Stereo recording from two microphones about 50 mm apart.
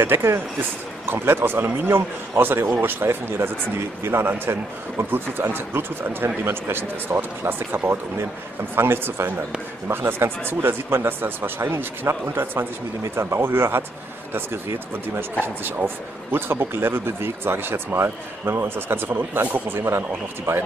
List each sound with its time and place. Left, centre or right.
0.0 s speech: right
15.4 s speech: right